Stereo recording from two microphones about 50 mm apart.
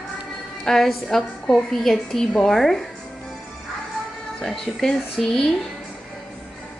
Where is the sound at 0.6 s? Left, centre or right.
Centre.